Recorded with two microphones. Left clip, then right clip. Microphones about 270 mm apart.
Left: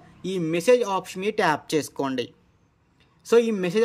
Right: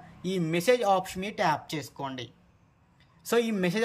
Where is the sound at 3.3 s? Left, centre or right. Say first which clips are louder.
Left 7 dB; centre.